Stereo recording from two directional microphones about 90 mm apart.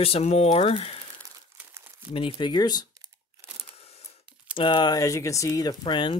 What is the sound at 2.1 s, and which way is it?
Speech, 65° left (ahead or behind).